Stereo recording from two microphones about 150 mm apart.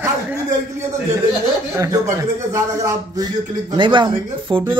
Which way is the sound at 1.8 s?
20° right (ahead or behind).